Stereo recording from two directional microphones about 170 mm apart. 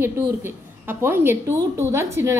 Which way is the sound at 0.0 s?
15° right (ahead or behind).